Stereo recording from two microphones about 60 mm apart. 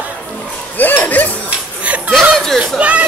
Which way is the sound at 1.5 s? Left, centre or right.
Right.